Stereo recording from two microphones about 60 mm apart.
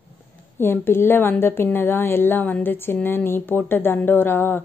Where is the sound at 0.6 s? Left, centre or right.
Left.